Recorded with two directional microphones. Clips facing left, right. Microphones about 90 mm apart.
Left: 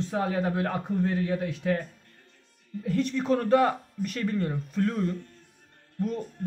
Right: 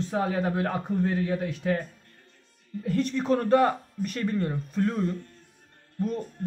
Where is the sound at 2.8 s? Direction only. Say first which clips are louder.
Even; 45° right (ahead or behind); by 5.1 s 25° right (ahead or behind).